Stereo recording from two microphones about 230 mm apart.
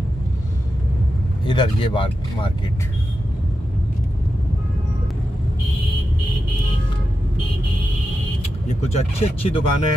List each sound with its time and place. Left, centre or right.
1.5 s speech: left
8.8 s speech: left